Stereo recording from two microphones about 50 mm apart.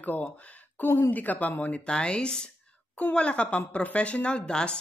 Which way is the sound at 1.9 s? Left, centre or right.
Centre.